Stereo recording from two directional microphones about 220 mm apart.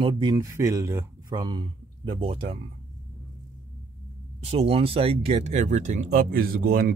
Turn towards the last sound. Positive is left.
turn(degrees=-45)  # may be behind; listen again after turning